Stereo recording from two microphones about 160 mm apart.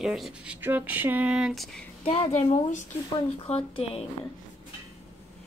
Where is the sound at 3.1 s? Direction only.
35° left (ahead or behind).